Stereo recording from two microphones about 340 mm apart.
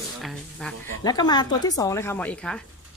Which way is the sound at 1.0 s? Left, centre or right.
Centre.